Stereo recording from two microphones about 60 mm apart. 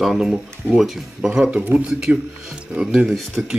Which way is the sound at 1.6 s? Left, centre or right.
Right.